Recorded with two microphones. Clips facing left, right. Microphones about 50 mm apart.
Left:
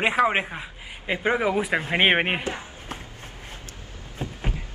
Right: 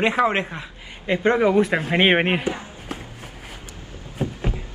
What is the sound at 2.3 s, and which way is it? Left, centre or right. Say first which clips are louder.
Speech: right 4 dB; right.